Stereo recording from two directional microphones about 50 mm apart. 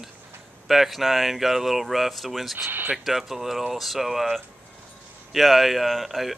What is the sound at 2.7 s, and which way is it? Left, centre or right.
Speech, right.